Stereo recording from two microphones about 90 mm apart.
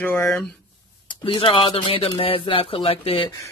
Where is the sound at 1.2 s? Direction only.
80° left.